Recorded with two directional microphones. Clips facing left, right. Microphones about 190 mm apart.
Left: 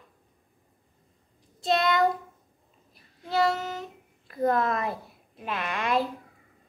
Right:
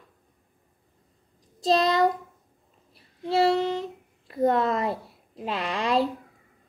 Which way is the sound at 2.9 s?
30° right (ahead or behind).